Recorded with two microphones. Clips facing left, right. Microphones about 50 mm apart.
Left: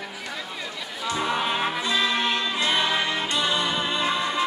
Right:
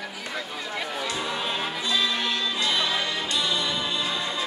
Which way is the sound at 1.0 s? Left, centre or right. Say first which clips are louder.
Left 8 dB; left.